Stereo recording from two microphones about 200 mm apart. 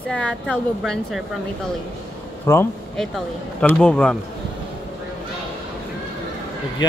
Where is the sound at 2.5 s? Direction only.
10° left (ahead or behind).